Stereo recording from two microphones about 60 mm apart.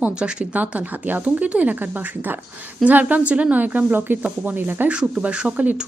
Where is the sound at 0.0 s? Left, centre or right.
Centre.